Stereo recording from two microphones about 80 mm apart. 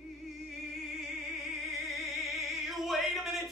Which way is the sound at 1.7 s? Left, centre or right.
Centre.